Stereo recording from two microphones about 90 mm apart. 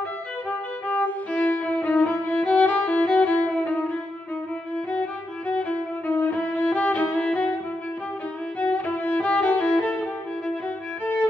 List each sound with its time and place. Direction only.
0.5 s violin: 15° left (ahead or behind)
5.5 s violin: 15° left (ahead or behind)
6.7 s music: 15° left (ahead or behind)
8.5 s violin: 15° left (ahead or behind)